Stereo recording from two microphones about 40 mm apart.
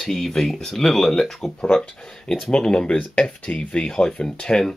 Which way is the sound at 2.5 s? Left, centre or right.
Left.